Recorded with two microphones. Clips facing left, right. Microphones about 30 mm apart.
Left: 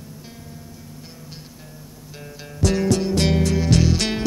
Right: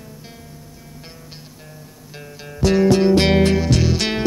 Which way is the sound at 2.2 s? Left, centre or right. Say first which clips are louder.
Right 2 dB; centre.